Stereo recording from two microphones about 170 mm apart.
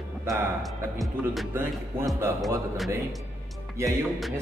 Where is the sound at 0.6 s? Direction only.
Centre (ahead or behind).